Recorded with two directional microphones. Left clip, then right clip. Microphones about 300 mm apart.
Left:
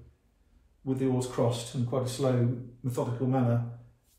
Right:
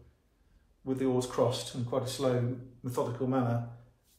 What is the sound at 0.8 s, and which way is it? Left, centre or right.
A man's voice, centre.